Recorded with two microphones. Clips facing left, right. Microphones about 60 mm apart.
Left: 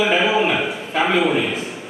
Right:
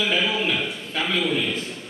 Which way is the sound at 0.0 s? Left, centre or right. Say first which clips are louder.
Left 6 dB; centre.